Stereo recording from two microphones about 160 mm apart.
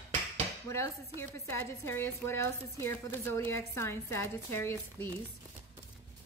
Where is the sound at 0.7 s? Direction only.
15° left (ahead or behind).